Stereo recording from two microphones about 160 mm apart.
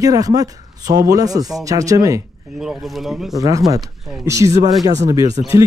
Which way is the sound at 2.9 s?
Centre (ahead or behind).